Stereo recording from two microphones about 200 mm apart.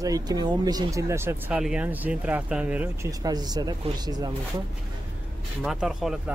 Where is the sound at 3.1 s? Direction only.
20° right (ahead or behind).